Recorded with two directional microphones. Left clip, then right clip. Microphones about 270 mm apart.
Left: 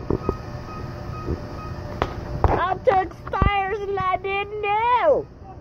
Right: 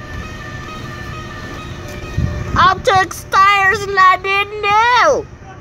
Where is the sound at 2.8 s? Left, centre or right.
Centre.